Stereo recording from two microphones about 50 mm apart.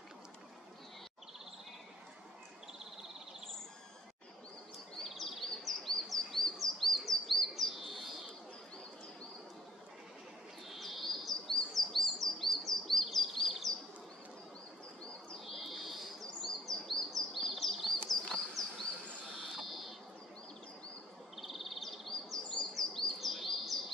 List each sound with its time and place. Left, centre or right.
4.9 s bird vocalization: centre
10.7 s chirp: centre
15.3 s bird: centre
16.2 s chirp: centre
18.1 s insect: centre
19.5 s fire alarm: centre
21.4 s chirp: centre